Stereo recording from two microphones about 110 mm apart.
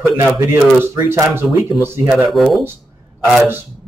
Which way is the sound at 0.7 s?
20° right (ahead or behind).